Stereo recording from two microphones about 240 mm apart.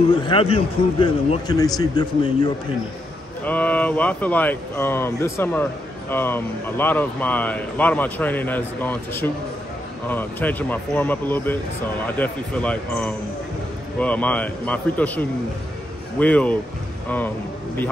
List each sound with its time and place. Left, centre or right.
0.3 s a man's voice: left
3.4 s a man's voice: centre